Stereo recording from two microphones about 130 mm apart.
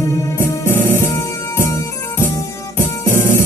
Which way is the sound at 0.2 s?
20° left (ahead or behind).